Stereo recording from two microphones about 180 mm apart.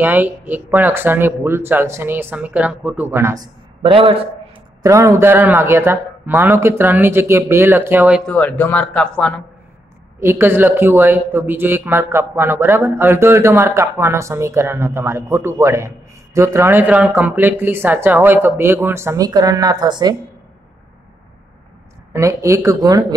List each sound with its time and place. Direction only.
0.0 s speech: 10° right (ahead or behind)
3.8 s a man's voice: 30° right (ahead or behind)
4.8 s speech: 15° right (ahead or behind)
8.3 s speech: 10° left (ahead or behind)
10.2 s speech: 15° right (ahead or behind)
22.1 s speech: 15° right (ahead or behind)